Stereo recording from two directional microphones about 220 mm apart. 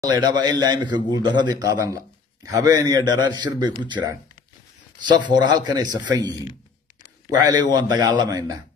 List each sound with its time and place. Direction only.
0.0 s a man's voice: 20° right (ahead or behind)
7.7 s a man's voice: 20° right (ahead or behind)